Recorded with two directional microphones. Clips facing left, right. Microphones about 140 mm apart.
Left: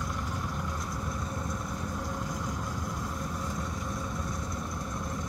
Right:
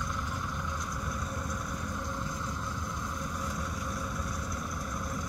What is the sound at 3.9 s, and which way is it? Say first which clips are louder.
Vehicle: left 1 dB; 20° left (ahead or behind).